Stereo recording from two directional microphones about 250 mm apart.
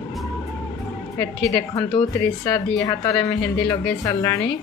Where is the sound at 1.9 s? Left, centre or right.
Centre.